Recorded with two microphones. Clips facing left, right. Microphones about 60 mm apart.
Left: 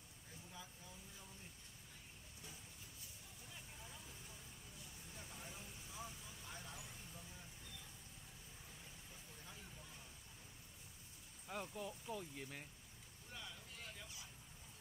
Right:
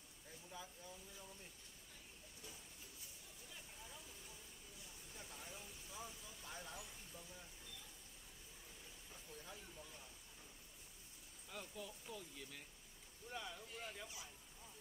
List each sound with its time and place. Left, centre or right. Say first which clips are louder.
5.3 s vehicle: even; centre
11.4 s a sound: left 5 dB; left
13.3 s vehicle: right 5 dB; centre